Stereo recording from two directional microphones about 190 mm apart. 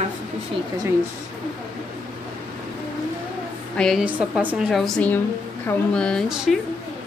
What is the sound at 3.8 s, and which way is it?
A woman's voice, centre (ahead or behind).